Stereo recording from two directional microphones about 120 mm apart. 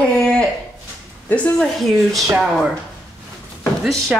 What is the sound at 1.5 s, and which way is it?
Speech, centre (ahead or behind).